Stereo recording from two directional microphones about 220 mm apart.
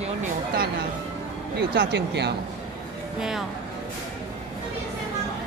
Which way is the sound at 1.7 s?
50° right (ahead or behind).